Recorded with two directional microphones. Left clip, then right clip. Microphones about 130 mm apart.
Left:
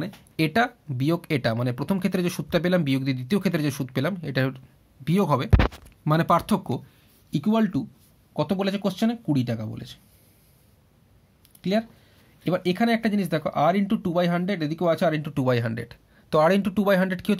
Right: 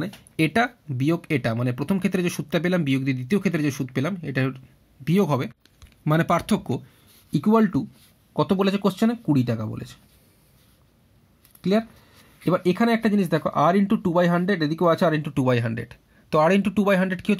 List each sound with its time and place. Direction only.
0.4 s speech: 30° right (ahead or behind)
5.0 s speech: 25° right (ahead or behind)
7.2 s speech: 60° right (ahead or behind)
12.4 s speech: 55° right (ahead or behind)
15.3 s speech: 30° right (ahead or behind)